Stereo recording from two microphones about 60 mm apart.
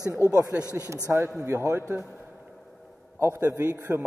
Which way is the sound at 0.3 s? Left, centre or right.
Right.